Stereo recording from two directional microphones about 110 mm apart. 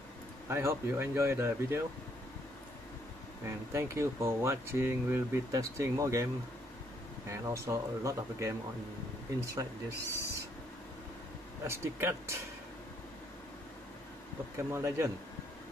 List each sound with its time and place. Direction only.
0.5 s speech: 25° right (ahead or behind)
3.4 s speech: 25° right (ahead or behind)
7.2 s speech: 25° right (ahead or behind)
11.6 s speech: 25° right (ahead or behind)
14.7 s speech: 25° right (ahead or behind)